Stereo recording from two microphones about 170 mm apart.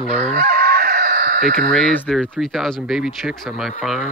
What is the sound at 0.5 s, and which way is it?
Chicken, 65° right (ahead or behind).